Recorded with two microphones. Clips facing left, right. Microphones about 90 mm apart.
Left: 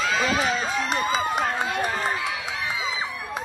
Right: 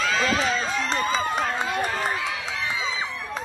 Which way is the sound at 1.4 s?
35° left (ahead or behind).